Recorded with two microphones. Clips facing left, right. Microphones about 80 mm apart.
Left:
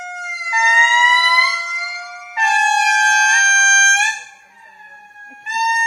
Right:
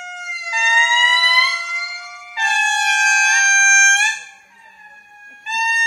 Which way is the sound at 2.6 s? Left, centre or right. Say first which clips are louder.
Left 2 dB; centre.